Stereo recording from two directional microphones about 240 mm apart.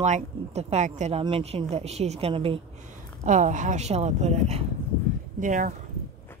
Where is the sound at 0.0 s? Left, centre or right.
Right.